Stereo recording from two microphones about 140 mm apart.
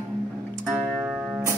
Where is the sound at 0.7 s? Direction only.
10° right (ahead or behind).